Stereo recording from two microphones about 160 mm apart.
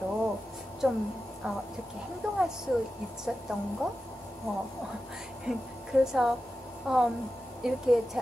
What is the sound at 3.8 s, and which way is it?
Speech, centre (ahead or behind).